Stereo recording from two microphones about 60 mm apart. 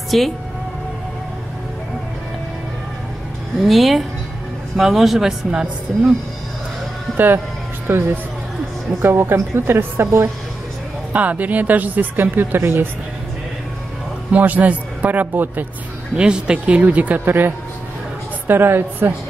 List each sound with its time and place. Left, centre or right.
0.1 s speech: centre
3.6 s speech: centre
7.8 s a woman's voice: right
11.1 s a woman's voice: right
14.3 s a woman's voice: right
16.2 s a woman's voice: centre; by 19.1 s right